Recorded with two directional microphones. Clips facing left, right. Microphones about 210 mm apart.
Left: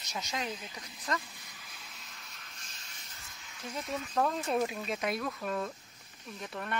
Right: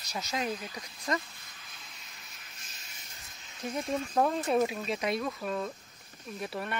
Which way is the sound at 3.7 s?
30° right (ahead or behind).